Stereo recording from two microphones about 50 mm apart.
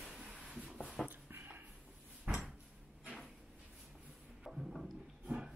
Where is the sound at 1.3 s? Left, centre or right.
Right.